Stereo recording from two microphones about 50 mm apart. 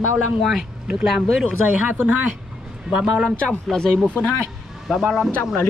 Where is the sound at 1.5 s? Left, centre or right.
Right.